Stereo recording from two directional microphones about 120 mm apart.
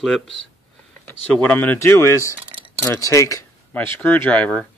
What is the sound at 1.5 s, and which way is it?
Speech, 15° left (ahead or behind).